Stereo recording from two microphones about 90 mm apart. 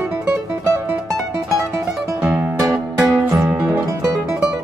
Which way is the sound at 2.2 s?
5° right (ahead or behind).